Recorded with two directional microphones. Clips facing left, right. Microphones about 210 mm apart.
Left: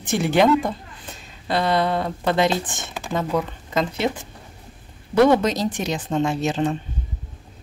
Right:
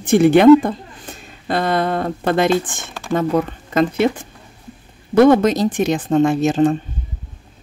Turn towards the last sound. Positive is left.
turn(degrees=-50)  # may be behind; listen again after turning